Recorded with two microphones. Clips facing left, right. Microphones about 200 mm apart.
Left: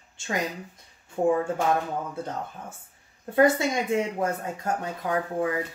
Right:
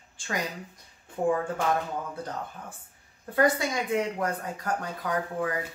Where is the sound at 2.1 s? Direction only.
25° left (ahead or behind).